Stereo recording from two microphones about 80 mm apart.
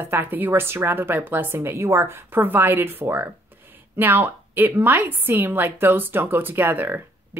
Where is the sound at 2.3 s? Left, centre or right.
Right.